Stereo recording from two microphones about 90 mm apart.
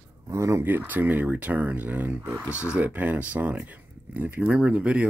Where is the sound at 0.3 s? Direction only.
35° right (ahead or behind).